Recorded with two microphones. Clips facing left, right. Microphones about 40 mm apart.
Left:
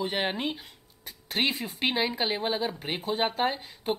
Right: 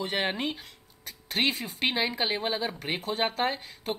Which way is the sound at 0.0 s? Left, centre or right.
Centre.